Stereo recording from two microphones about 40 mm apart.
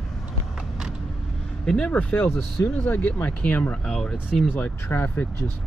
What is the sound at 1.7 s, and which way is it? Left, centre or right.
Speech, centre.